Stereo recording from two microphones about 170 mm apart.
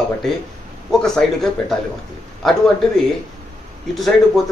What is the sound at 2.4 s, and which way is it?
A man's voice, centre (ahead or behind).